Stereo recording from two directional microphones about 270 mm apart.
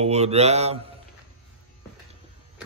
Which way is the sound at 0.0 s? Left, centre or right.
Right.